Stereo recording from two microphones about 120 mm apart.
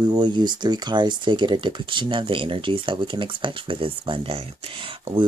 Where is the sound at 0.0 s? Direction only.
35° right (ahead or behind).